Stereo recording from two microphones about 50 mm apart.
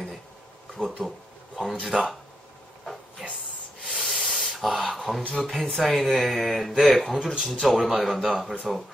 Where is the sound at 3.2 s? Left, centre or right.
Centre.